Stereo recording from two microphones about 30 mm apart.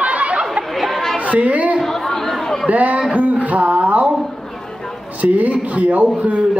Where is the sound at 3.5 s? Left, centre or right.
Right.